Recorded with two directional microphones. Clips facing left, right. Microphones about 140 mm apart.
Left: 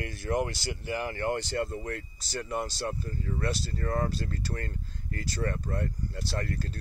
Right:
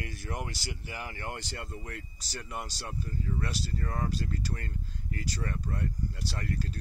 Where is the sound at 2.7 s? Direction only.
40° left (ahead or behind).